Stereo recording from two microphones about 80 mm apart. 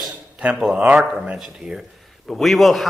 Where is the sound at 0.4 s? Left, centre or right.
Centre.